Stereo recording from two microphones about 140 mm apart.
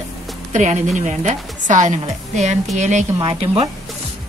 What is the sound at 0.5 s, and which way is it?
Speech, 60° right (ahead or behind).